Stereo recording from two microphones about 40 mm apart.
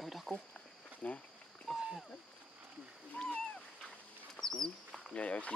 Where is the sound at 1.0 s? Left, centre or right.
Left.